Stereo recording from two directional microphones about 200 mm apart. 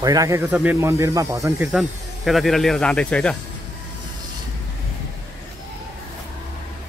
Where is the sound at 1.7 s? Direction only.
Centre (ahead or behind).